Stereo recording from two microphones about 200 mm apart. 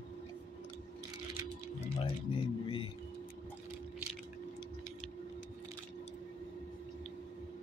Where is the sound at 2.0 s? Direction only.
25° left (ahead or behind).